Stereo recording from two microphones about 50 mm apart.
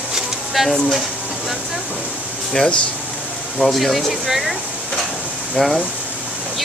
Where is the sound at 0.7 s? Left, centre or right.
Centre.